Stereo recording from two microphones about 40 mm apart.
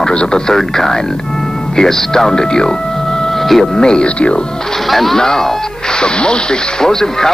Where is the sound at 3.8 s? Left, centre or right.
Centre.